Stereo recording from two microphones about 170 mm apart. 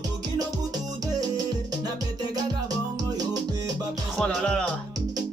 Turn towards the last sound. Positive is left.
turn(degrees=5)  # may be behind; listen again after turning